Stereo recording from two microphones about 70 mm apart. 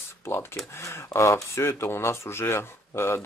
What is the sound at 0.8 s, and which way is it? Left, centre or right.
Speech, left.